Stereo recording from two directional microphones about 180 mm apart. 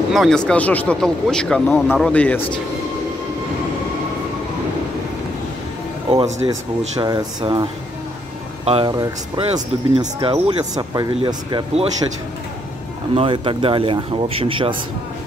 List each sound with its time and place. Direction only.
0.1 s speech: centre (ahead or behind)
6.0 s speech: 30° right (ahead or behind)
8.6 s speech: 30° right (ahead or behind)
10.6 s speech: 20° right (ahead or behind)
13.1 s speech: 30° right (ahead or behind)